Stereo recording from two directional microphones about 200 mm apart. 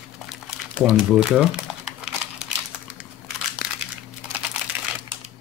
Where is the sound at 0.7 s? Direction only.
5° right (ahead or behind).